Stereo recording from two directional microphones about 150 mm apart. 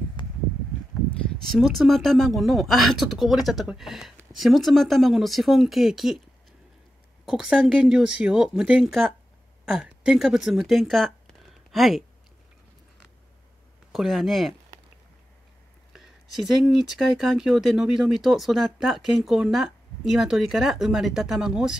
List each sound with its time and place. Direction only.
1.5 s speech: centre (ahead or behind)
7.2 s speech: 5° right (ahead or behind)
13.9 s speech: centre (ahead or behind)
16.5 s speech: centre (ahead or behind)